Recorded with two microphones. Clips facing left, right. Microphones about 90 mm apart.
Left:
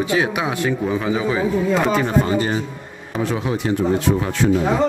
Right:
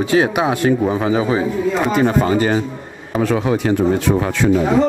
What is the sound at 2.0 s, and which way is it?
Speech, 65° right (ahead or behind).